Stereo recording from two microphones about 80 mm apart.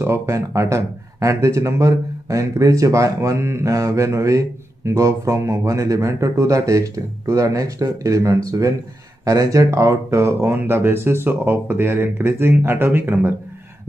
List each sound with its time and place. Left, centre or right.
0.0 s speech: right